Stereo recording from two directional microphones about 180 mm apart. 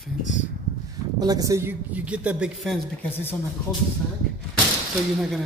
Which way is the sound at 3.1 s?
10° left (ahead or behind).